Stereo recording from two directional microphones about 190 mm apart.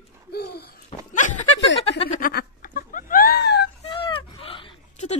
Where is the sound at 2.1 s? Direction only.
45° left (ahead or behind).